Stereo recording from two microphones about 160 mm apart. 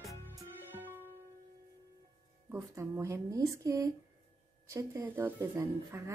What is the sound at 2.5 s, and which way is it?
Speech, 15° right (ahead or behind).